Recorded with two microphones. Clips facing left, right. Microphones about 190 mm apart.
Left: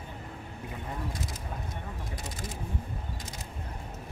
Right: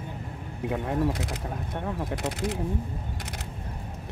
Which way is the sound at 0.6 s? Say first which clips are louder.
Right 13 dB; 70° right (ahead or behind).